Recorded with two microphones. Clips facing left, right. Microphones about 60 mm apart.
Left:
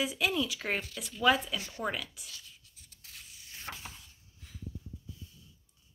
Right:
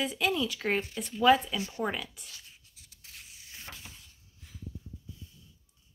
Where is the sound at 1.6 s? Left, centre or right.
Right.